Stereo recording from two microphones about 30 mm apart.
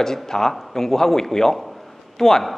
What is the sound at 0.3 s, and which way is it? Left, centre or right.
A man's voice, centre.